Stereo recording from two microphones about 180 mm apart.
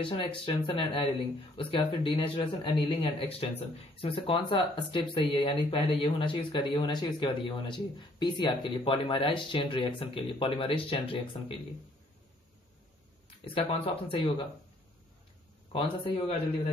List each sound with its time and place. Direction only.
0.0 s a man's voice: 30° left (ahead or behind)
13.4 s a man's voice: 30° left (ahead or behind)
15.7 s speech: 30° left (ahead or behind)